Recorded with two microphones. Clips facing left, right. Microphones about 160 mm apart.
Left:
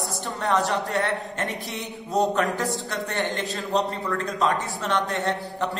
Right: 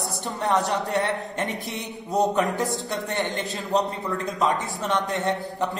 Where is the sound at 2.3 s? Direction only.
20° right (ahead or behind).